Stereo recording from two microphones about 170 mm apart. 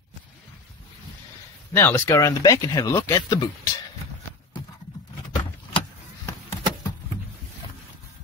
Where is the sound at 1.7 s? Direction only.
15° left (ahead or behind).